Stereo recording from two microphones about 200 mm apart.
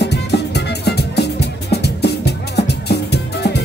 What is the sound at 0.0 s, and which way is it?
Music, 55° left (ahead or behind).